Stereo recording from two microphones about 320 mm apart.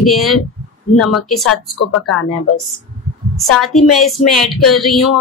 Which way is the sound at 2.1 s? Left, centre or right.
Left.